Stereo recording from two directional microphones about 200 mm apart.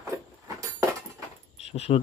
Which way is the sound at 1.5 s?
30° left (ahead or behind).